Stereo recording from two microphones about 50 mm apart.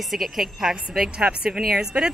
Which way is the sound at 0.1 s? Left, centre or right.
Centre.